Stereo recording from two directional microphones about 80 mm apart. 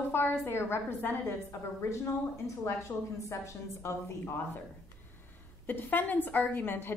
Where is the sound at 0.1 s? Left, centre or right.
Left.